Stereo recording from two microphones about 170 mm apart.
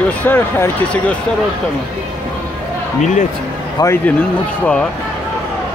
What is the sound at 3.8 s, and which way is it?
Speech, 15° left (ahead or behind).